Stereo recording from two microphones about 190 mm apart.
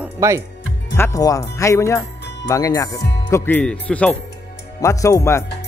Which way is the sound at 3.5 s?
5° left (ahead or behind).